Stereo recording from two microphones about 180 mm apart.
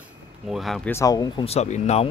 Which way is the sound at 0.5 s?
Centre (ahead or behind).